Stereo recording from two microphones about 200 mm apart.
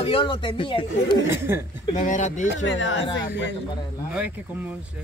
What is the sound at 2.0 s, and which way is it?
Speech, 35° left (ahead or behind).